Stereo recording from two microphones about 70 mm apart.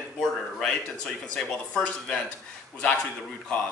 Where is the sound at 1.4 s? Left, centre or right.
Centre.